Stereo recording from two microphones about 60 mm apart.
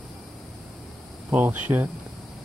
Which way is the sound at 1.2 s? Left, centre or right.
Right.